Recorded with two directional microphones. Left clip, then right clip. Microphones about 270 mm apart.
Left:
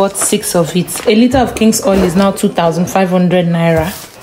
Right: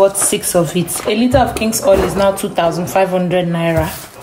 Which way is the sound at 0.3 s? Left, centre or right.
Left.